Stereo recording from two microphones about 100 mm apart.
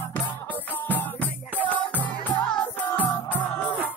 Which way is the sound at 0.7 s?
20° left (ahead or behind).